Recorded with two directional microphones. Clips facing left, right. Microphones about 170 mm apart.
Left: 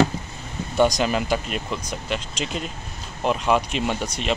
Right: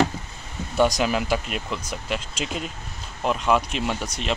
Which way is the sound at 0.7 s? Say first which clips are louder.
Left 1 dB; 5° right (ahead or behind).